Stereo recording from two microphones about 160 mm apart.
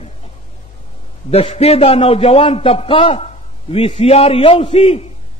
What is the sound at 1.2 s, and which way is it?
A man's voice, 40° left (ahead or behind).